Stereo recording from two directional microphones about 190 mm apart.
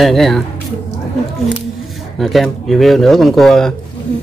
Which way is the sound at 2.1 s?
Centre (ahead or behind).